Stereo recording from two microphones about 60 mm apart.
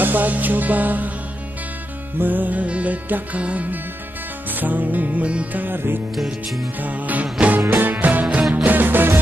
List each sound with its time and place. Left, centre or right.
0.0 s music: right
2.1 s music: right
6.1 s music: centre
6.8 s music: right